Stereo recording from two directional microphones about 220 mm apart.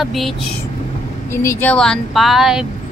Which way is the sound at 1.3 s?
10° left (ahead or behind).